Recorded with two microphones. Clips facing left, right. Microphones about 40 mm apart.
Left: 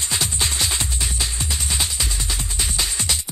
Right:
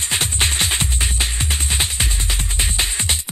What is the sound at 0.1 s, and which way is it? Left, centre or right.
Music, right.